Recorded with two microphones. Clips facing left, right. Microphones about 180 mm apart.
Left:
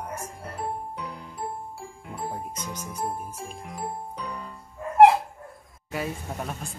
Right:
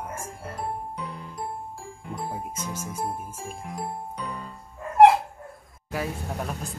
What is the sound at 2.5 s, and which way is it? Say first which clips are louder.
Speech: right 2 dB; 5° right (ahead or behind).